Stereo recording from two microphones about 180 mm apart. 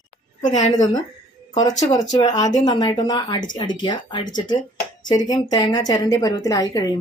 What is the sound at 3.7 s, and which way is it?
Speech, 25° left (ahead or behind).